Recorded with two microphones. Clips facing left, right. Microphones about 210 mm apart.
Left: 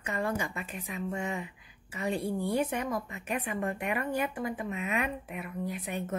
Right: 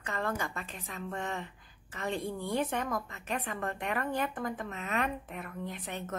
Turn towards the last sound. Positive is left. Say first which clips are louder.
# left 4 dB
turn(degrees=10)  # may be behind; listen again after turning